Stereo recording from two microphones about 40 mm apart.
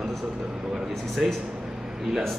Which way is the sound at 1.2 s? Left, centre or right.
Centre.